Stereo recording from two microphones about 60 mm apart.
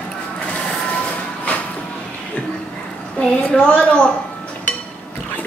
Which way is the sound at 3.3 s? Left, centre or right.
Centre.